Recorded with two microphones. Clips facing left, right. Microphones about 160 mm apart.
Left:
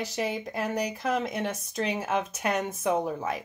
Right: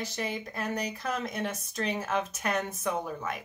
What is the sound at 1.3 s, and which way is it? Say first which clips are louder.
Speech: left 3 dB; 25° left (ahead or behind).